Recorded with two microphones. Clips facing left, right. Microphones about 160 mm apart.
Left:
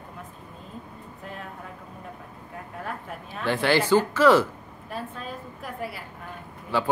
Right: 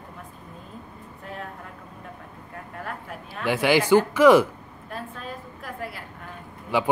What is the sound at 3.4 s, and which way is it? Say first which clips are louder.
Speech: right 2 dB; 10° right (ahead or behind).